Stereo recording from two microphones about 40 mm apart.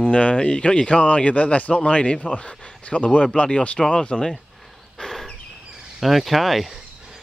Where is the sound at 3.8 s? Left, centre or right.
Centre.